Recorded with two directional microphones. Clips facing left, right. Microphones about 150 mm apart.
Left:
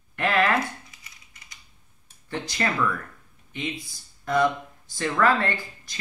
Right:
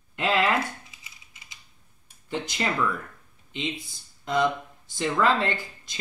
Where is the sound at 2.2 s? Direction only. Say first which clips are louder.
Left 1 dB; 15° right (ahead or behind).